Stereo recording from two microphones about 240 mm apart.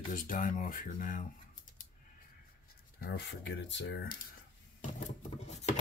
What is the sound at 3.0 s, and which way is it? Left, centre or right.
Speech, left.